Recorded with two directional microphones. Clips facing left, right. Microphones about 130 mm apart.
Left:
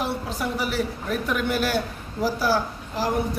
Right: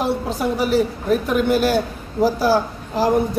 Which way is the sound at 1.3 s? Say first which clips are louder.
Right 6 dB; 25° right (ahead or behind).